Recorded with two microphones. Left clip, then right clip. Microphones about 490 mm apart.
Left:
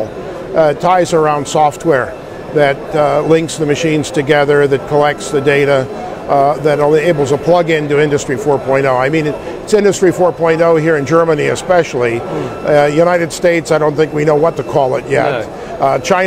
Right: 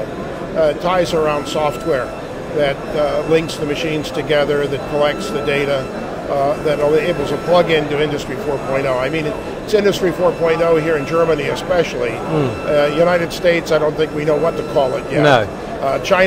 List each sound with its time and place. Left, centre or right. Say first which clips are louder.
0.6 s speech: left 5 dB; left